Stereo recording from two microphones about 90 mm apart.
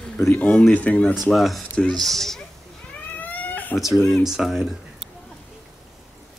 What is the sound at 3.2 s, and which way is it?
Cat, 20° left (ahead or behind).